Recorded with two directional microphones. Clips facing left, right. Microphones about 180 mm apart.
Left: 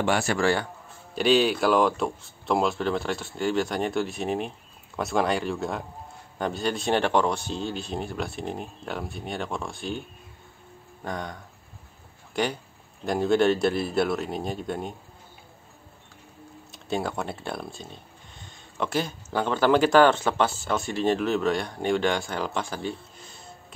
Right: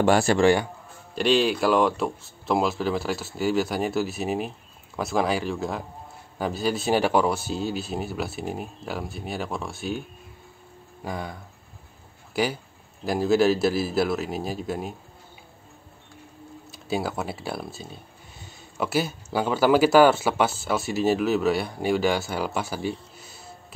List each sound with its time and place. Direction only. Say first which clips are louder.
0.0 s a man's voice: right 5 dB; 35° right (ahead or behind)
0.4 s speech: right 5 dB; 15° right (ahead or behind)
1.1 s speech: even; centre (ahead or behind)
11.1 s speech: right 1 dB; 5° right (ahead or behind)
16.7 s speech: right 1 dB; 5° right (ahead or behind)